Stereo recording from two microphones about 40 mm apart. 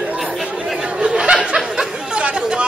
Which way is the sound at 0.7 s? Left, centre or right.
Right.